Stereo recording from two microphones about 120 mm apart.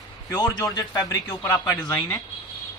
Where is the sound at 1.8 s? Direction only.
30° left (ahead or behind).